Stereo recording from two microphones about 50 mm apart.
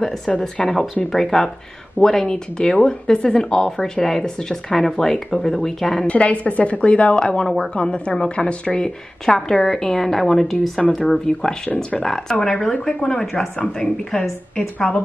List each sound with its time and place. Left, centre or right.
0.0 s speech: centre
6.0 s a woman's voice: left
7.4 s speech: centre
7.7 s a woman's voice: centre
9.2 s speech: centre